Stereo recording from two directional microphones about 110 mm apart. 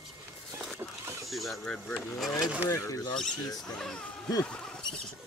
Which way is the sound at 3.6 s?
5° left (ahead or behind).